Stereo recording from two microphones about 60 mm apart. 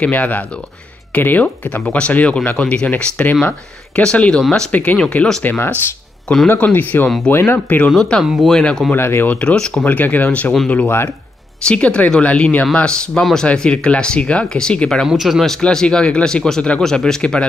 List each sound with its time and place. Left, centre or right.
0.0 s speech: left
6.7 s speech: left
8.2 s speech: centre
8.5 s speech: centre
8.9 s speech: left
9.3 s speech: left
11.6 s speech: centre
13.5 s speech: centre
15.0 s speech: centre
15.6 s speech: centre